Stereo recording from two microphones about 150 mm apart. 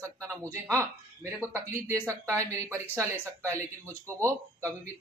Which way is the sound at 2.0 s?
20° right (ahead or behind).